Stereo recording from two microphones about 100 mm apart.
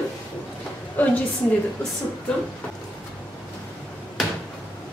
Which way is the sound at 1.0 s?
15° left (ahead or behind).